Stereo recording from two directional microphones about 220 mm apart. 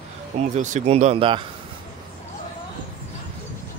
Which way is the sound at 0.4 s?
35° right (ahead or behind).